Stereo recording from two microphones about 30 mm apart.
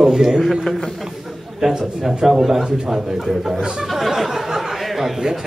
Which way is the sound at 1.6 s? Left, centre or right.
Centre.